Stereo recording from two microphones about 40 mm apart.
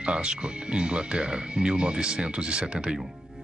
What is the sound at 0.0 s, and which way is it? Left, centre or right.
Speech, right.